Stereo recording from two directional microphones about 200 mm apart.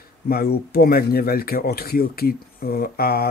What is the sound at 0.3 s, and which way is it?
Speech, 50° left (ahead or behind).